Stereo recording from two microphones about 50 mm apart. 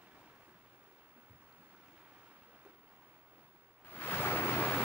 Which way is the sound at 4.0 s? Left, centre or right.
Left.